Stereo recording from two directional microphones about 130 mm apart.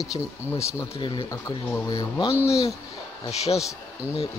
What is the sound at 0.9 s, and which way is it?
Speech, 40° left (ahead or behind).